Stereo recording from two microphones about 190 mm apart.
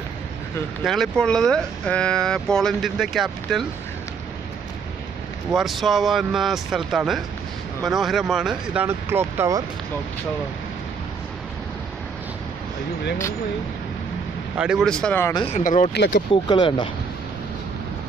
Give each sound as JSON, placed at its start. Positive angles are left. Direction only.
{"t": 0.8, "sound": "speech", "side_deg": 0}
{"t": 5.5, "sound": "speech", "side_deg": 0}
{"t": 8.8, "sound": "speech", "side_deg": -15}
{"t": 14.6, "sound": "speech", "side_deg": 0}
{"t": 15.4, "sound": "speech", "side_deg": 40}
{"t": 15.9, "sound": "speech", "side_deg": 60}
{"t": 16.4, "sound": "speech", "side_deg": 25}